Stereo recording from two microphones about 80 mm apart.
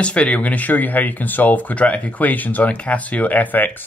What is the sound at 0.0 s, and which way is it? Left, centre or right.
Speech, centre.